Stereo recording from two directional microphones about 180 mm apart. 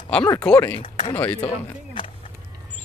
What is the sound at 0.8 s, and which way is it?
Speech, 30° left (ahead or behind).